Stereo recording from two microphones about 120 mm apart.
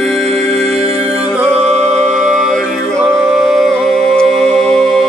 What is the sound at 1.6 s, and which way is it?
Music, 65° right (ahead or behind).